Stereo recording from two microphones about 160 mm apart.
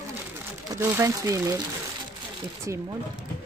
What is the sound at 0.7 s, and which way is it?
Speech, 15° right (ahead or behind).